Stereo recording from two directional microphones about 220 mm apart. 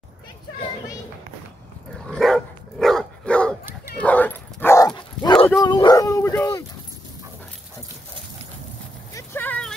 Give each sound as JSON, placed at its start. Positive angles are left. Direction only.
{"t": 2.0, "sound": "dog", "side_deg": 0}
{"t": 9.1, "sound": "vehicle", "side_deg": 10}